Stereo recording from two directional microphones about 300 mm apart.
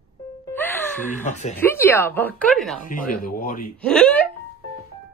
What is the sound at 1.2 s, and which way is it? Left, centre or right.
Speech, left.